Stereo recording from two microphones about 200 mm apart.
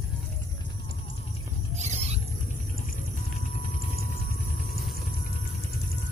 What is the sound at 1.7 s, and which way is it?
Wild animals, 35° right (ahead or behind).